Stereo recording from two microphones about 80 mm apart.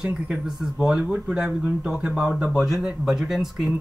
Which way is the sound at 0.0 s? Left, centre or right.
Centre.